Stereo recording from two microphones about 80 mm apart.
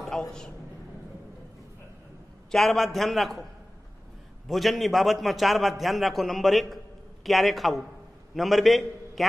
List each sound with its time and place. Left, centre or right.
0.0 s a sound: centre
2.5 s a man's voice: centre
4.5 s a man's voice: centre